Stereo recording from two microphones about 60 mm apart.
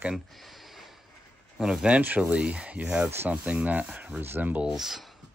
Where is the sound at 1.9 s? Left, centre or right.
Right.